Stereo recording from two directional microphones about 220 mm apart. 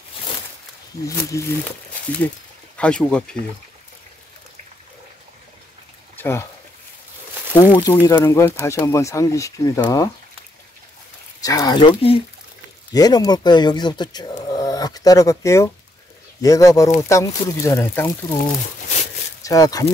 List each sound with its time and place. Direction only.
1.0 s speech: 15° left (ahead or behind)
2.8 s speech: 5° left (ahead or behind)
6.1 s a sound: 10° left (ahead or behind)
7.7 s speech: 10° left (ahead or behind)
11.4 s speech: 15° left (ahead or behind)
14.5 s a sound: 15° left (ahead or behind)
16.3 s speech: 15° left (ahead or behind)
19.4 s speech: 15° left (ahead or behind)